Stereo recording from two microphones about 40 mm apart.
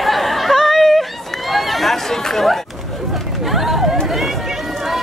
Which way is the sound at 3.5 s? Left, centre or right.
Centre.